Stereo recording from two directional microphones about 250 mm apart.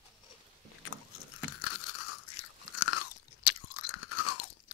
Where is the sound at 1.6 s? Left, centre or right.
Left.